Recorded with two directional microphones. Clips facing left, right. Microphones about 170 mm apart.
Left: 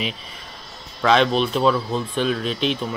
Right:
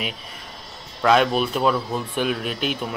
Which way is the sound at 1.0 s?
5° right (ahead or behind).